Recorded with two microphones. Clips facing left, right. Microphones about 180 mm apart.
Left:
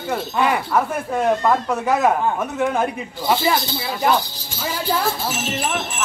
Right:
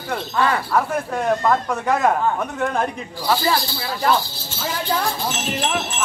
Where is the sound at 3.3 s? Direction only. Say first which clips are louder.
Left 1 dB; 20° left (ahead or behind).